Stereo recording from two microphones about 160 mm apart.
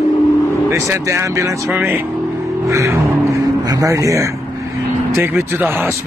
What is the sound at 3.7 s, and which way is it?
Speech, 20° right (ahead or behind).